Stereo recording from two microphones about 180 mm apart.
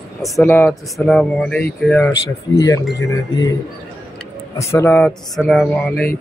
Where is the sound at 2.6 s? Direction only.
20° left (ahead or behind).